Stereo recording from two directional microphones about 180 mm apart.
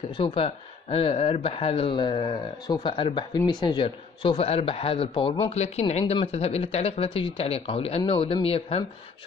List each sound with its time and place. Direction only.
0.2 s speech: 30° left (ahead or behind)